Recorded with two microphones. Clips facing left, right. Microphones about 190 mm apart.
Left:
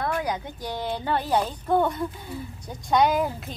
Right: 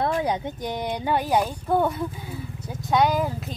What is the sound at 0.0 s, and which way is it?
Speech, 25° right (ahead or behind).